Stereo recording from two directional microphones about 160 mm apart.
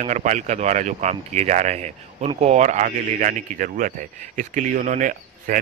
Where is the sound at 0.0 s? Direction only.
50° right (ahead or behind).